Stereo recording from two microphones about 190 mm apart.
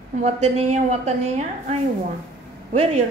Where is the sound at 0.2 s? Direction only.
35° right (ahead or behind).